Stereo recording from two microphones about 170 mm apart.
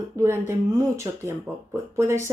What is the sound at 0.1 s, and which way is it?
Speech, 15° right (ahead or behind).